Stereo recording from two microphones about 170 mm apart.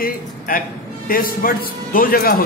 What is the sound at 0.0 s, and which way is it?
A man's voice, 55° left (ahead or behind).